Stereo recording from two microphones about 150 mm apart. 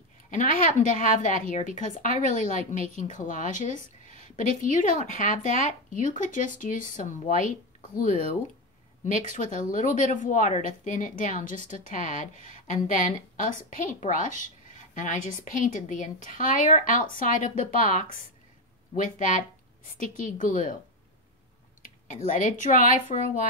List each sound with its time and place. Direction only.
0.3 s a woman's voice: 60° left (ahead or behind)
9.4 s a woman's voice: 60° left (ahead or behind)
21.8 s a woman's voice: 60° left (ahead or behind)